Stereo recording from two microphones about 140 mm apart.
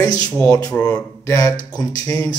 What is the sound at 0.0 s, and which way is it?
A man's voice, 25° left (ahead or behind).